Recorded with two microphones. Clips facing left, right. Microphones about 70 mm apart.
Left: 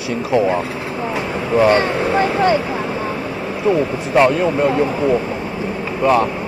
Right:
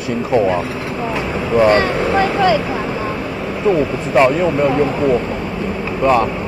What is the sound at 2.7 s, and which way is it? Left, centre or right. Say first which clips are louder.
Vehicle: right 1 dB; centre.